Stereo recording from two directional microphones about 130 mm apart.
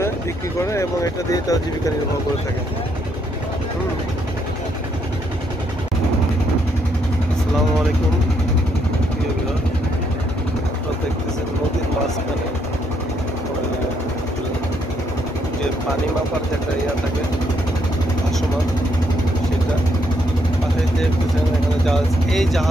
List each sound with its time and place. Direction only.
0.6 s speech: 25° left (ahead or behind)
21.8 s speech: centre (ahead or behind)